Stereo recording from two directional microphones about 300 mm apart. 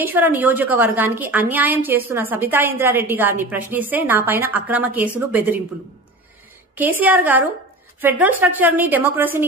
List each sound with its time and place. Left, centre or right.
0.0 s a woman's voice: centre
6.7 s a woman's voice: centre